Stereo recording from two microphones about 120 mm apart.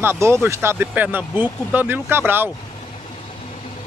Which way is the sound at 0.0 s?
20° right (ahead or behind).